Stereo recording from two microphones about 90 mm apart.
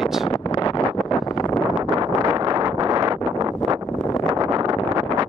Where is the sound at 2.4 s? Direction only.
55° right (ahead or behind).